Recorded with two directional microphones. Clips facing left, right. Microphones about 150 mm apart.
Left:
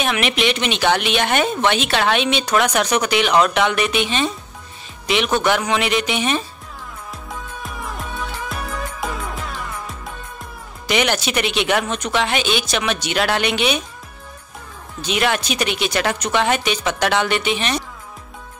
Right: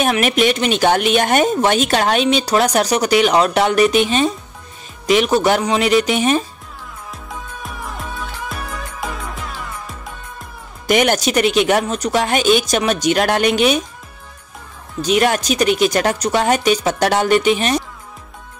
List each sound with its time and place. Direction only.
0.0 s speech: 45° right (ahead or behind)
7.6 s music: centre (ahead or behind)
10.9 s speech: 45° right (ahead or behind)
15.0 s speech: 40° right (ahead or behind)